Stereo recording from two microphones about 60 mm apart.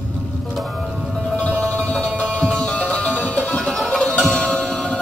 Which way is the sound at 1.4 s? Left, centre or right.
Left.